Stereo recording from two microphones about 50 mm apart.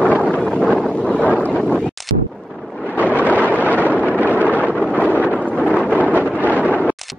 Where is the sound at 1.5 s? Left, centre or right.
Left.